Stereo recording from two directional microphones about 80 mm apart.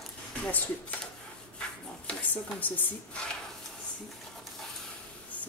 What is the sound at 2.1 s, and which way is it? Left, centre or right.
Speech, centre.